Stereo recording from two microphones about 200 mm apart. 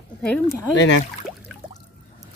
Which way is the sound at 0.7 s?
60° left (ahead or behind).